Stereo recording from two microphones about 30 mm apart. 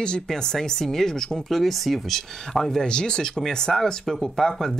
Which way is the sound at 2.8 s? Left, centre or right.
Left.